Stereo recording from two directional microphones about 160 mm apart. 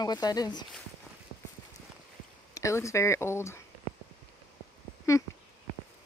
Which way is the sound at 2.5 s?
20° left (ahead or behind).